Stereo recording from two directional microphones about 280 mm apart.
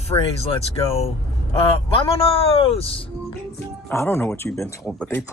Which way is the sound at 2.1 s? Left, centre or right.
Left.